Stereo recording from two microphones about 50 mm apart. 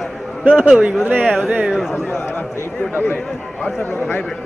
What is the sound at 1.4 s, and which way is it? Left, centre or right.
Speech, right.